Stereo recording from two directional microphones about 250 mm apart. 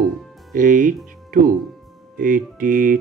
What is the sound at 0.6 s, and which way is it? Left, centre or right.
Music, right.